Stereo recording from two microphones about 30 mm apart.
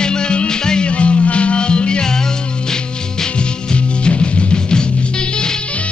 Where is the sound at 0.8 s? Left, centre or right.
Left.